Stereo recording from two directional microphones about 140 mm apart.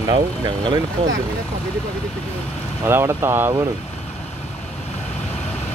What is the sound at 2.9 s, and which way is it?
Speech, 20° right (ahead or behind).